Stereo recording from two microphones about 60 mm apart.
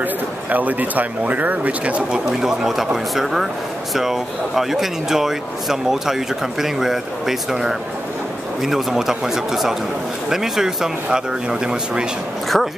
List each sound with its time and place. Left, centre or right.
0.0 s speech: right
2.4 s speech: centre
12.5 s speech: centre